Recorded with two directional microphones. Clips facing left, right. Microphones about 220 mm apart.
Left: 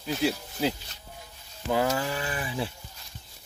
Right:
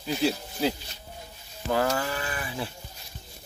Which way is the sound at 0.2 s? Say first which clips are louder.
Right 1 dB; 15° left (ahead or behind).